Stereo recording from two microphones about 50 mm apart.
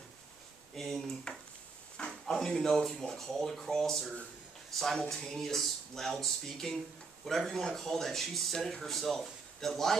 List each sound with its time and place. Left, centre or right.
0.7 s speech: centre
5.1 s speech: centre